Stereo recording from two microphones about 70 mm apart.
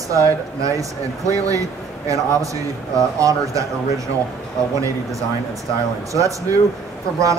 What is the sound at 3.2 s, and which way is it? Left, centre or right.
Speech, right.